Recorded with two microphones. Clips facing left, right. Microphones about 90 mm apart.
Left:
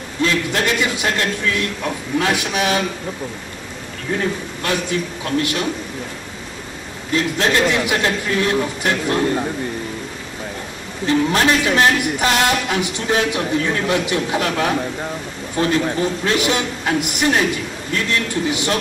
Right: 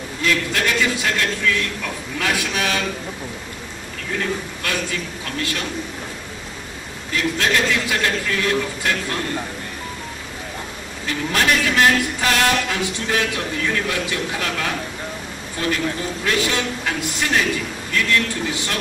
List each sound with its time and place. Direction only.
0.2 s a man's voice: 25° left (ahead or behind)
4.1 s a man's voice: 20° left (ahead or behind)
7.2 s a man's voice: 30° left (ahead or behind)
11.1 s a man's voice: 25° left (ahead or behind)
16.3 s a man's voice: 20° left (ahead or behind)